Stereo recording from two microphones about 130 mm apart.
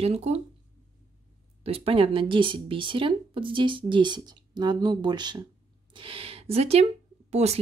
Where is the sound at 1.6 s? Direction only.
50° right (ahead or behind).